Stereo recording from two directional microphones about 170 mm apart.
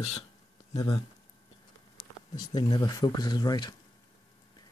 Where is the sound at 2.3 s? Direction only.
25° left (ahead or behind).